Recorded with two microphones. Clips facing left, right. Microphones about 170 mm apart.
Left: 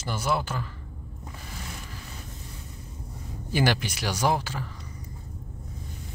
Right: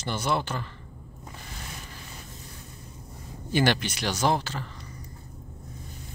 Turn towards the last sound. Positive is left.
turn(degrees=10)  # may be behind; listen again after turning